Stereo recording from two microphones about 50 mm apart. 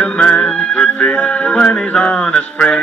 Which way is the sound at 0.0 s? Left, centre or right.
Left.